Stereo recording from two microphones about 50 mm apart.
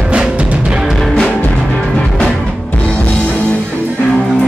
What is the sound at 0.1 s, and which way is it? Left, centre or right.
Music, right.